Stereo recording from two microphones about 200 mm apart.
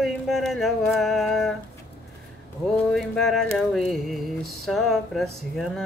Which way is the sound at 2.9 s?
Centre (ahead or behind).